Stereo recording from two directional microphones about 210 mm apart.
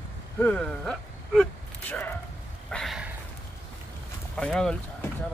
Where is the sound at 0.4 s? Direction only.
5° left (ahead or behind).